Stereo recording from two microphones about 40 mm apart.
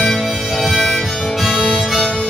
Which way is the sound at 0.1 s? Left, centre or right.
Centre.